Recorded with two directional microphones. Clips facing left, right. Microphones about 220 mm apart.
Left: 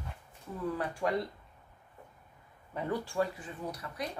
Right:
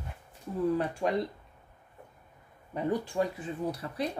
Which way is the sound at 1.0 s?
25° right (ahead or behind).